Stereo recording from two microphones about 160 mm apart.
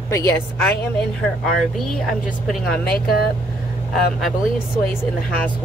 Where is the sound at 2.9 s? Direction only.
70° left (ahead or behind).